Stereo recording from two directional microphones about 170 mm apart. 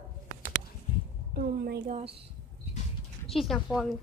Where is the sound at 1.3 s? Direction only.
60° right (ahead or behind).